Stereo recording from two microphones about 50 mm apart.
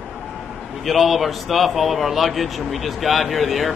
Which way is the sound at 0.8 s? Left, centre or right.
Centre.